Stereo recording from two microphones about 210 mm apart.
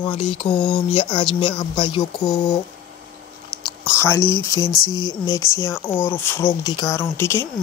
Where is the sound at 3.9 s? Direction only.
10° left (ahead or behind).